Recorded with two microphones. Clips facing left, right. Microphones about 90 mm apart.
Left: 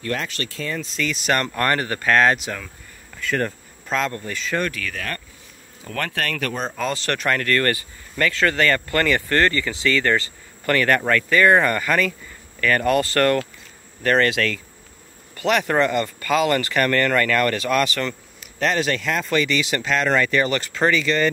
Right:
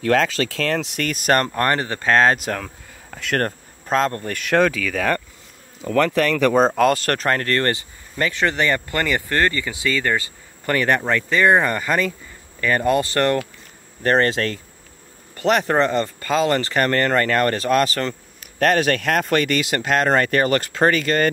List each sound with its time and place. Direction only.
0.0 s speech: 90° right; by 1.5 s 45° right (ahead or behind)
1.5 s speech: 30° right (ahead or behind)
2.3 s speech: 50° right (ahead or behind); by 3.4 s 65° right (ahead or behind)
3.4 s speech: 40° right (ahead or behind)
4.3 s speech: 65° right (ahead or behind)
6.7 s speech: 60° right (ahead or behind); by 13.4 s 20° right (ahead or behind)
14.0 s speech: 35° right (ahead or behind)